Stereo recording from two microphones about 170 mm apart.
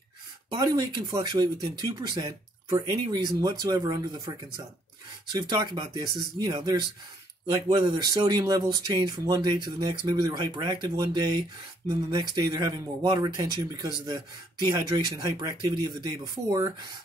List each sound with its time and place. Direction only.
0.5 s speech: 25° right (ahead or behind)
5.5 s speech: 25° right (ahead or behind)